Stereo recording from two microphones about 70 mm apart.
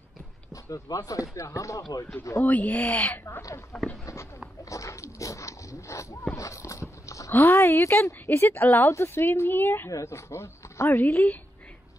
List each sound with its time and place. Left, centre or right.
0.5 s speech: left
1.8 s speech: left
2.4 s speech: left
3.7 s speech: centre
4.0 s speech: left
4.6 s dog: left
6.3 s a sound: left
7.3 s a woman's voice: left
8.8 s a woman's voice: left
9.8 s a woman's voice: left